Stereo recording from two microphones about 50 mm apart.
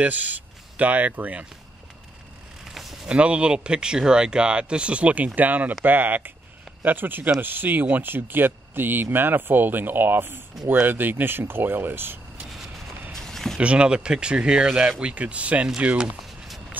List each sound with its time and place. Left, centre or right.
0.0 s speech: right
2.6 s a sound: centre
3.1 s speech: right
12.4 s vehicle: centre
13.1 s a sound: centre
13.6 s speech: right
14.7 s speech: centre
15.0 s speech: right